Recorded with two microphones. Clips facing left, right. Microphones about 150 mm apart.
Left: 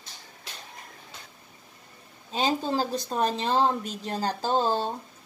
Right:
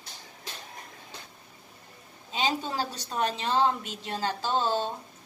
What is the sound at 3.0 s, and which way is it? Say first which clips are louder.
A woman's voice: left 3 dB; 40° left (ahead or behind).